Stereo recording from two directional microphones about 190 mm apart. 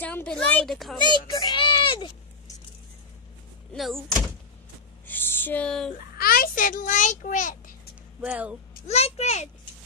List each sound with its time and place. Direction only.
0.0 s a woman's voice: 10° left (ahead or behind)
0.9 s a sound: 25° left (ahead or behind)
3.7 s speech: centre (ahead or behind)
5.0 s a sound: 10° left (ahead or behind)
6.1 s a child's voice: 50° left (ahead or behind)
8.2 s speech: 10° right (ahead or behind)
8.8 s a child's voice: 35° left (ahead or behind)